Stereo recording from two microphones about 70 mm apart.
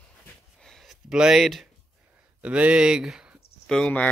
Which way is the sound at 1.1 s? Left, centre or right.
Centre.